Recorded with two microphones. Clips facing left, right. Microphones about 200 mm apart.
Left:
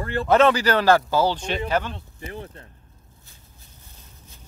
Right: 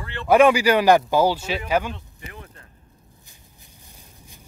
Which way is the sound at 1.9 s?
35° left (ahead or behind).